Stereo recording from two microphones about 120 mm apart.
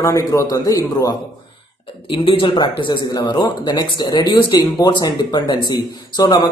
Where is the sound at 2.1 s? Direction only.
45° left (ahead or behind); by 6.5 s 30° left (ahead or behind).